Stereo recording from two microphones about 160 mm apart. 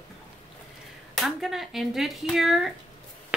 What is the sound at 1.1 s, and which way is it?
Speech, centre (ahead or behind).